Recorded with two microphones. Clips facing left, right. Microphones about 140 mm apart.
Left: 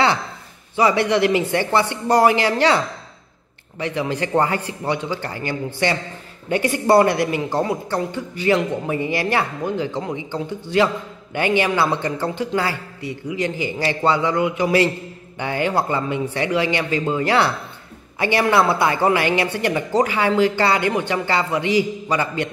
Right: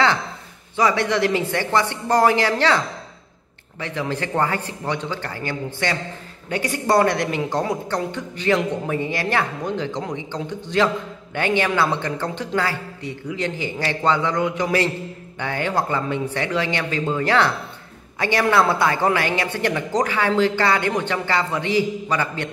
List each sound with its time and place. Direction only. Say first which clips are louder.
0.9 s speech: left 3 dB; 15° left (ahead or behind)
3.8 s speech: left 3 dB; 15° left (ahead or behind)
7.2 s speech: left 2 dB; 5° left (ahead or behind)